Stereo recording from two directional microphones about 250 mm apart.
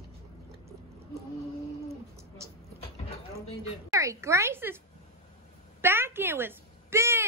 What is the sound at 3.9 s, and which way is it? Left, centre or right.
Speech, centre.